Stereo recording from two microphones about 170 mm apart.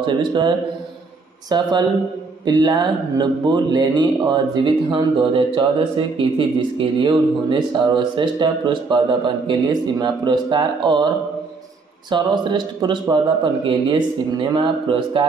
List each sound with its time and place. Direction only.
0.0 s speech: 25° right (ahead or behind)
12.1 s speech: 25° right (ahead or behind)